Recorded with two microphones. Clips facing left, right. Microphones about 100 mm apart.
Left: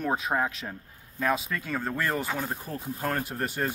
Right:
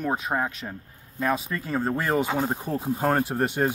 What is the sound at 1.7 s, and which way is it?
Speech, 20° right (ahead or behind).